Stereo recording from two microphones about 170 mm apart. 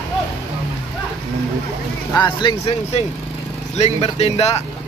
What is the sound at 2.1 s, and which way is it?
Speech, 25° left (ahead or behind).